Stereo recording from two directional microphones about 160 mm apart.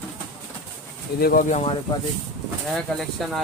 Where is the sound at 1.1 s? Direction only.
70° left (ahead or behind).